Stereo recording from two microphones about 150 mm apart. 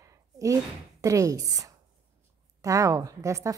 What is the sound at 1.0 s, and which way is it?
A woman's voice, 20° right (ahead or behind).